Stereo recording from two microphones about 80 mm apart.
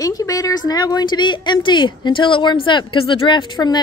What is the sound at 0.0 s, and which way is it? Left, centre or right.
A woman's voice, left.